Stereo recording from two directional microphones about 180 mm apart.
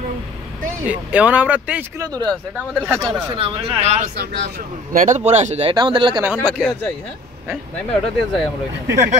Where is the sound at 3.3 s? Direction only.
30° right (ahead or behind).